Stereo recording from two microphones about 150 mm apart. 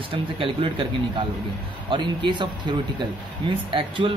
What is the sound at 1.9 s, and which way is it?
Speech, 30° right (ahead or behind).